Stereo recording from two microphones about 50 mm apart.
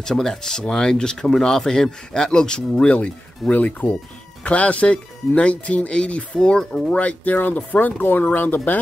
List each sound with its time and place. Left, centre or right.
0.0 s speech: centre; by 8.5 s left